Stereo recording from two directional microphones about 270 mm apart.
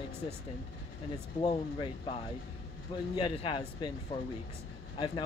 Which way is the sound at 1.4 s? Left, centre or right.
Centre.